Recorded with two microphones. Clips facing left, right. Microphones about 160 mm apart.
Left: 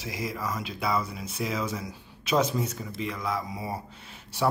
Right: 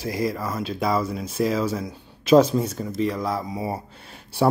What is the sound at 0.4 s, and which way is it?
Speech, 35° right (ahead or behind).